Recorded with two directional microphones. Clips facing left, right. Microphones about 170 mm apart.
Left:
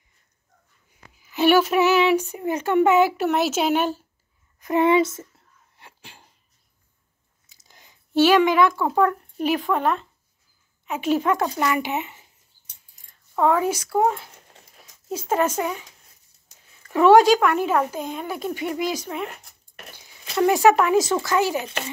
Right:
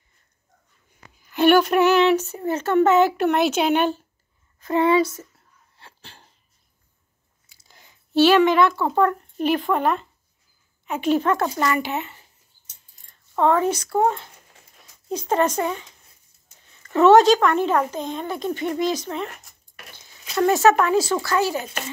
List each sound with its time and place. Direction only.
1.2 s speech: 5° left (ahead or behind)
4.6 s speech: 20° left (ahead or behind)
5.8 s dog: 15° left (ahead or behind)
7.4 s a sound: 20° left (ahead or behind)
9.7 s speech: centre (ahead or behind)
11.7 s speech: 15° left (ahead or behind)
13.4 s speech: 5° left (ahead or behind)
16.8 s speech: 10° left (ahead or behind)
19.9 s a sound: 10° left (ahead or behind)
20.8 s speech: 15° left (ahead or behind)